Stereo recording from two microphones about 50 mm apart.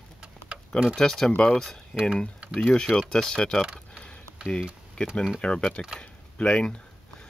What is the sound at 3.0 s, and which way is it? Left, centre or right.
Speech, centre.